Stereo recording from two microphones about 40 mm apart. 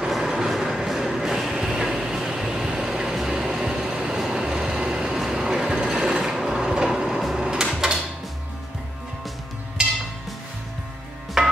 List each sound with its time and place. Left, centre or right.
0.0 s train: centre
7.2 s a sound: centre
11.4 s music: centre